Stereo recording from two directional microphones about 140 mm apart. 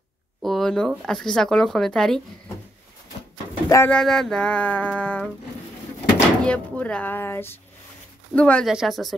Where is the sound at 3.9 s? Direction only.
5° left (ahead or behind).